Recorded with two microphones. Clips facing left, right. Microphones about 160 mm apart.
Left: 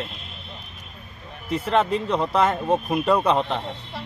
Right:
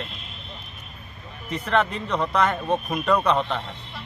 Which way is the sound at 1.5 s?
30° left (ahead or behind).